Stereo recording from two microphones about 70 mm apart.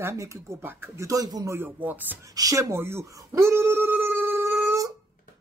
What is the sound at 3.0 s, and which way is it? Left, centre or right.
Speech, right.